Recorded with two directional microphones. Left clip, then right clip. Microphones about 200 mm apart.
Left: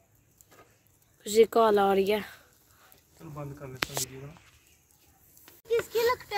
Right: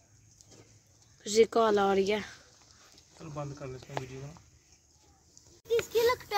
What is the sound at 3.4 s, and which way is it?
Speech, 30° right (ahead or behind).